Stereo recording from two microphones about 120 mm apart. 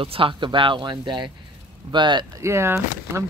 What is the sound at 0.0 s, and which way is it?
Speech, 50° right (ahead or behind).